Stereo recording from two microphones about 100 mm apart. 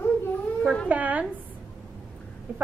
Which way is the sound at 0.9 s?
15° right (ahead or behind).